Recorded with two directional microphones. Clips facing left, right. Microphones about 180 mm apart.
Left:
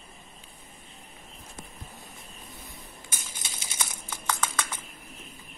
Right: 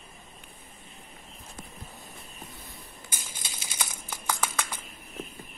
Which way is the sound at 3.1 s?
25° left (ahead or behind).